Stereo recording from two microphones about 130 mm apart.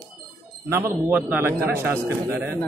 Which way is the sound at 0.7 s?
20° right (ahead or behind).